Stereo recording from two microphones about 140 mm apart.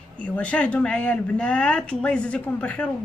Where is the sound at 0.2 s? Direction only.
10° left (ahead or behind).